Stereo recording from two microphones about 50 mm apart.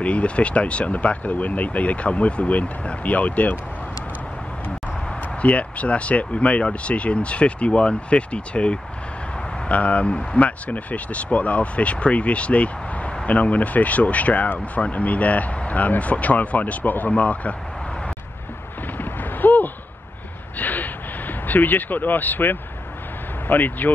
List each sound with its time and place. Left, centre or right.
0.0 s speech: left
5.4 s speech: left
18.9 s a sound: left
23.4 s speech: left